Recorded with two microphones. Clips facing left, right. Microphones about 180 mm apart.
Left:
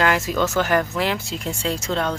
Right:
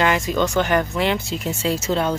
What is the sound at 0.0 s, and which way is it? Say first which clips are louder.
Speech: right 1 dB; centre (ahead or behind).